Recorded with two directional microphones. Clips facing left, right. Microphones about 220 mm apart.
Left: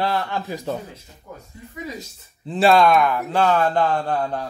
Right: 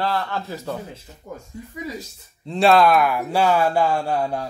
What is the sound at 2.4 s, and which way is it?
Speech, centre (ahead or behind).